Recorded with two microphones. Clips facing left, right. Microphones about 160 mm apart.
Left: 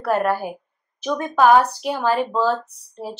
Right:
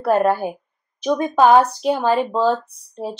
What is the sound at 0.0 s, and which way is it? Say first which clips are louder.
Speech: right 3 dB; 20° right (ahead or behind).